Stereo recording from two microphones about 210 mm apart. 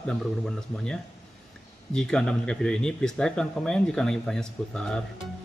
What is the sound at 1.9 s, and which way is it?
A man's voice, 5° left (ahead or behind).